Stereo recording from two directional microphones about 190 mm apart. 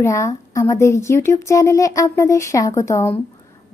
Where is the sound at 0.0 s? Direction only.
15° left (ahead or behind).